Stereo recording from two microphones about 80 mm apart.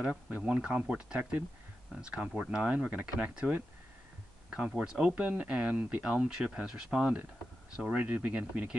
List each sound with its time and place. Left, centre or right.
0.0 s speech: centre